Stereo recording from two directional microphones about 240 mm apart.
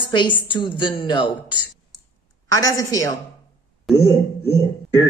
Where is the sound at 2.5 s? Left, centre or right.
Centre.